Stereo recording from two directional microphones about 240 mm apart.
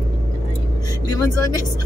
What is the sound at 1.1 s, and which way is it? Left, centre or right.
Speech, centre.